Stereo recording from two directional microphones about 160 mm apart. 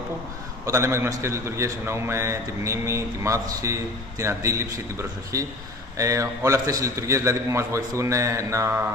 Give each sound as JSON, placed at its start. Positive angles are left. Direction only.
{"t": 0.7, "sound": "a man's voice", "side_deg": -15}